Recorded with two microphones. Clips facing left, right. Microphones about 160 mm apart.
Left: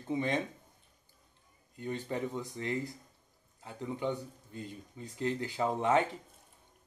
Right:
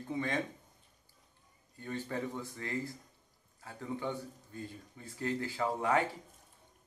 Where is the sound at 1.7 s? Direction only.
20° left (ahead or behind).